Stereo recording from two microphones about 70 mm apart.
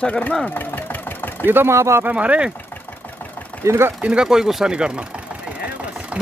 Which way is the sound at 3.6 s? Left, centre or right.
Right.